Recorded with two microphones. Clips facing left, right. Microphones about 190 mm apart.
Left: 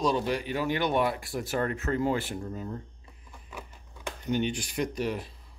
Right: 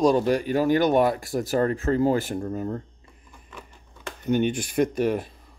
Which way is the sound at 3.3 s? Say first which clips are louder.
Left 1 dB; 5° left (ahead or behind).